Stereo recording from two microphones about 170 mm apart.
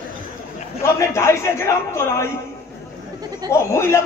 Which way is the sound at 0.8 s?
15° left (ahead or behind).